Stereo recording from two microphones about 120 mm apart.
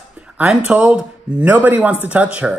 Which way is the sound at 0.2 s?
10° right (ahead or behind).